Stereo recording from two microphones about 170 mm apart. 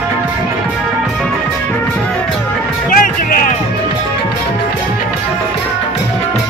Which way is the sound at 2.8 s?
55° left (ahead or behind).